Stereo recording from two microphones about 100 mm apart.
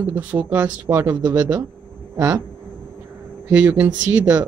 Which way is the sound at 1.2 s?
35° right (ahead or behind).